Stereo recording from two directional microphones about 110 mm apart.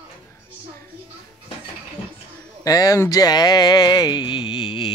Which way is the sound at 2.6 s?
35° left (ahead or behind).